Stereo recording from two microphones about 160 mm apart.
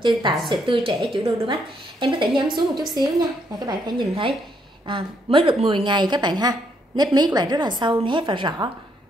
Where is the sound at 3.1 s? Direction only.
25° right (ahead or behind).